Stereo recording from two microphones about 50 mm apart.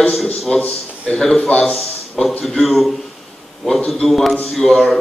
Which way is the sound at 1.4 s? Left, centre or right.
Left.